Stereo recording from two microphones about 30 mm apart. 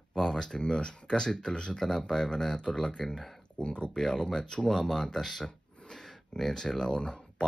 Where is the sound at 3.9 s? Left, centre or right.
Left.